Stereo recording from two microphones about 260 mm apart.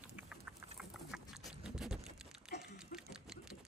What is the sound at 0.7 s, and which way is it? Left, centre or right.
Patter, centre.